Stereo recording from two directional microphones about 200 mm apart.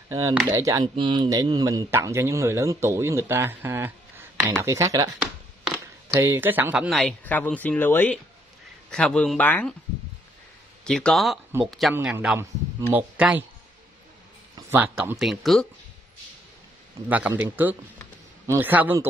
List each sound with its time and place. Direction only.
0.3 s speech: 10° right (ahead or behind)
5.2 s a sound: 5° right (ahead or behind)
6.1 s speech: 15° right (ahead or behind); by 9.8 s 10° left (ahead or behind)
10.8 s speech: 5° left (ahead or behind)
14.7 s speech: 10° right (ahead or behind)
17.1 s speech: 10° right (ahead or behind)